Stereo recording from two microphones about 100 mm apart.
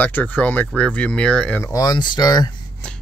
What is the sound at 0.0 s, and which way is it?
Speech, 15° left (ahead or behind).